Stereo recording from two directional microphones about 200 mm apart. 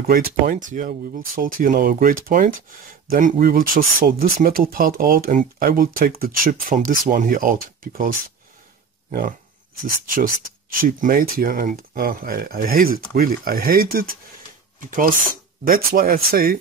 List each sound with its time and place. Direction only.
0.0 s speech: 50° right (ahead or behind)
9.8 s speech: 45° right (ahead or behind)